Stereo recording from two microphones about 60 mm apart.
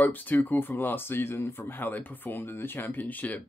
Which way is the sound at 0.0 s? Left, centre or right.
Left.